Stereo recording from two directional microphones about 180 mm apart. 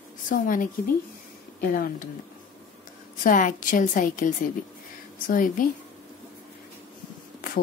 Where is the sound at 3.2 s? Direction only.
45° left (ahead or behind).